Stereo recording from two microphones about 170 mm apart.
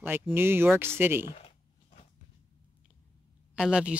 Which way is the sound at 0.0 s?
15° right (ahead or behind).